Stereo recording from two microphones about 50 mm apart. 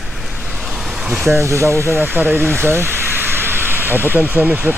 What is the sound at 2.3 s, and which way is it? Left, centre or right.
Speech, right.